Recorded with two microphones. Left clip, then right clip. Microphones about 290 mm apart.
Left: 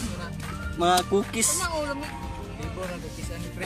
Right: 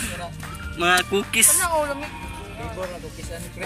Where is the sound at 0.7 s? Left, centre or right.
Centre.